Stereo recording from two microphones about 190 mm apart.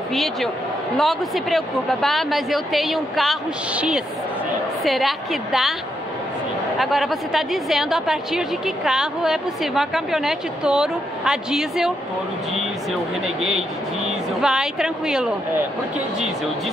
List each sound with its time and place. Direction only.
0.1 s a woman's voice: centre (ahead or behind)
6.8 s a woman's voice: centre (ahead or behind)
14.4 s a woman's voice: 5° right (ahead or behind)